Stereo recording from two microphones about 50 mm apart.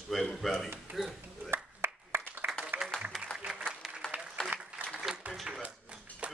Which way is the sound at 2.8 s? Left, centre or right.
Centre.